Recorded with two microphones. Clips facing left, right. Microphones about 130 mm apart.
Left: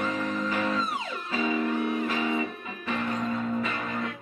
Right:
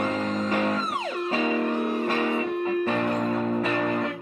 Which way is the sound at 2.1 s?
60° right (ahead or behind).